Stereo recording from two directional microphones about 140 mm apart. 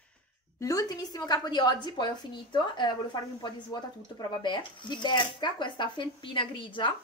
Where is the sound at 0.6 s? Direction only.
25° left (ahead or behind).